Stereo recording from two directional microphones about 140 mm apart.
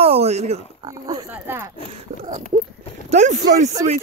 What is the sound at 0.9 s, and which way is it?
Oink, 30° right (ahead or behind).